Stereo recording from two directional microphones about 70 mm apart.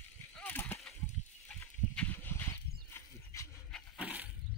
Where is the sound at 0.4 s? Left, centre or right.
Left.